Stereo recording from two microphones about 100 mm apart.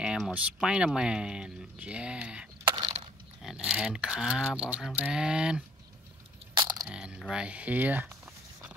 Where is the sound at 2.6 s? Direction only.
45° right (ahead or behind).